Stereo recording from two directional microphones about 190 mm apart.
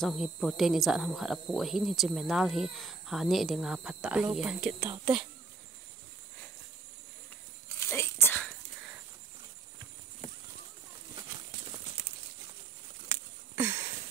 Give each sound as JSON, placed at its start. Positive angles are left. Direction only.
{"t": 0.0, "sound": "speech", "side_deg": 0}
{"t": 7.8, "sound": "a sound", "side_deg": 15}
{"t": 13.6, "sound": "sniff", "side_deg": -15}